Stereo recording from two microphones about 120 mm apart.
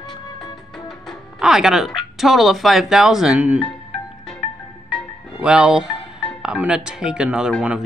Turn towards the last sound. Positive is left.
turn(degrees=-5)  # may be behind; listen again after turning